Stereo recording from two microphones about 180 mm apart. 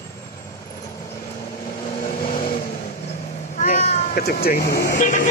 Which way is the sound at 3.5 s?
45° left (ahead or behind).